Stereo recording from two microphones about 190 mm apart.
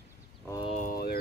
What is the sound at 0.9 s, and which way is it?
Music, 55° left (ahead or behind).